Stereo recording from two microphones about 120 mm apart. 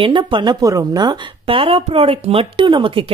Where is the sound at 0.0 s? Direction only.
45° right (ahead or behind).